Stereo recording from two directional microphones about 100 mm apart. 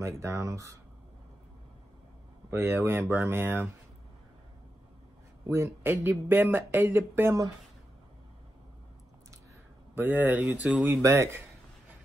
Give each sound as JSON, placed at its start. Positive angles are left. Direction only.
{"t": 0.0, "sound": "speech", "side_deg": -30}
{"t": 2.5, "sound": "speech", "side_deg": -25}
{"t": 5.5, "sound": "speech", "side_deg": -25}
{"t": 9.9, "sound": "speech", "side_deg": -20}